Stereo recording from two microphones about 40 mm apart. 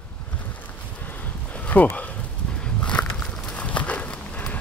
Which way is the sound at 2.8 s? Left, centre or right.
Left.